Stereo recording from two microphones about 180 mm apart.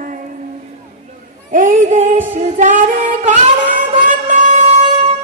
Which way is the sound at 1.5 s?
45° right (ahead or behind).